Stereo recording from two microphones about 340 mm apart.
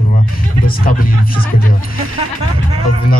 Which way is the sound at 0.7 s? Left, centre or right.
Left.